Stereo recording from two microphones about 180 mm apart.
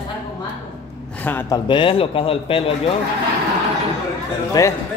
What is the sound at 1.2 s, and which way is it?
Speech, 10° left (ahead or behind).